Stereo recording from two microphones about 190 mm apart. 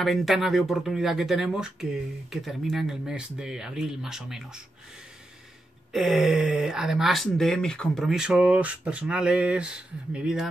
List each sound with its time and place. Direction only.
0.0 s speech: centre (ahead or behind)
5.9 s speech: centre (ahead or behind)